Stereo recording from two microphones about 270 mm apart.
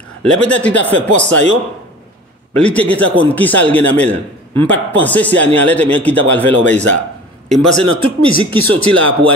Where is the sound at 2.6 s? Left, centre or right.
Centre.